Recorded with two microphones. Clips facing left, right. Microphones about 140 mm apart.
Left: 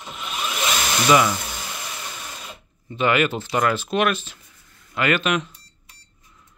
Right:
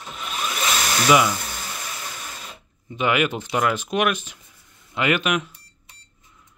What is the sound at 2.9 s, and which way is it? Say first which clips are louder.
Speech: left 1 dB; 15° right (ahead or behind).